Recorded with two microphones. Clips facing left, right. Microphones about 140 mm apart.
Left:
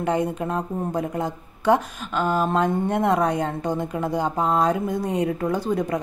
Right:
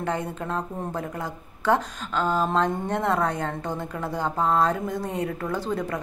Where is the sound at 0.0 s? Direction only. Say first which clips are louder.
Left 5 dB; 15° left (ahead or behind).